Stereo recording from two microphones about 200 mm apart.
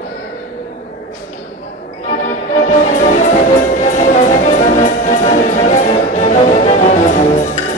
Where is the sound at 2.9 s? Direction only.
40° left (ahead or behind).